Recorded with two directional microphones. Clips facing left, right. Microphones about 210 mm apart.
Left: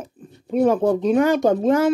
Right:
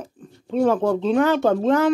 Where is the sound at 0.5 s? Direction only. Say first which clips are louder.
Left 2 dB; 10° left (ahead or behind).